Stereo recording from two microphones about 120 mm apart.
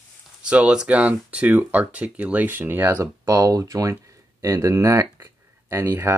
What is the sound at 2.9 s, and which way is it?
Speech, 25° right (ahead or behind).